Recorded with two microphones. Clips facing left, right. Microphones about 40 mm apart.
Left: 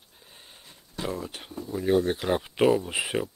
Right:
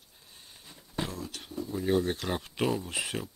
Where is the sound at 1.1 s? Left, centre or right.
Left.